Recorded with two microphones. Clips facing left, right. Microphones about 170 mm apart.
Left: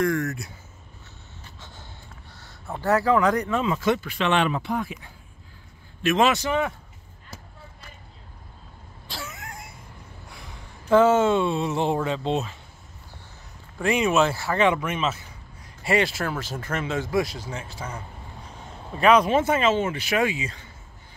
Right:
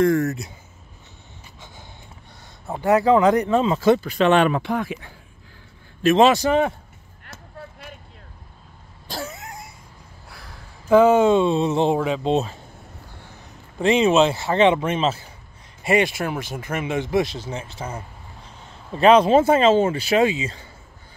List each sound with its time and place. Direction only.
0.0 s speech: 25° right (ahead or behind)
1.4 s a sound: 15° right (ahead or behind)
2.6 s speech: 15° right (ahead or behind); by 4.5 s 40° right (ahead or behind)
4.5 s speech: 85° right
6.0 s a man's voice: 30° right (ahead or behind)
9.0 s vehicle: 40° right (ahead or behind)
9.4 s a sound: 20° right (ahead or behind)
10.3 s a sound: centre (ahead or behind)
11.0 s speech: 15° right (ahead or behind)
13.7 s speech: 25° right (ahead or behind)
15.8 s speech: 20° right (ahead or behind)